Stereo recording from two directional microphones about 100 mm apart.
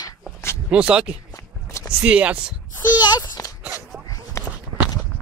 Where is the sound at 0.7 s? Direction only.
10° right (ahead or behind).